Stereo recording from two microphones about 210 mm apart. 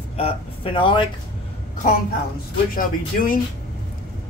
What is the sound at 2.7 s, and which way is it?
Speech, 40° left (ahead or behind).